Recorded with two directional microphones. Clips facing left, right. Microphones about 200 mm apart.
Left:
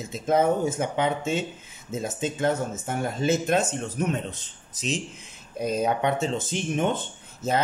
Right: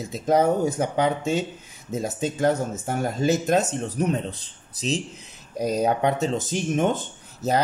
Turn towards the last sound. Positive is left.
turn(degrees=-40)  # may be behind; listen again after turning